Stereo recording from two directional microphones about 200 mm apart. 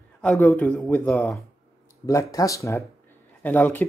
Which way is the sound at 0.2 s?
10° left (ahead or behind).